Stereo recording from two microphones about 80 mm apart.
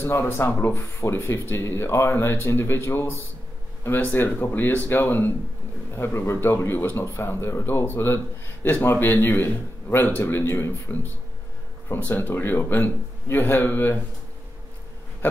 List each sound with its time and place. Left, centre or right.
0.0 s speech: left